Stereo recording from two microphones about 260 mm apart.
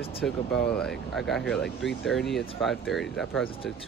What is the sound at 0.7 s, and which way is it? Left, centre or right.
Speech, centre.